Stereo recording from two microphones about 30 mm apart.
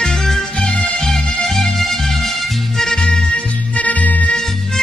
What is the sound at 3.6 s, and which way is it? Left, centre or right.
Music, left.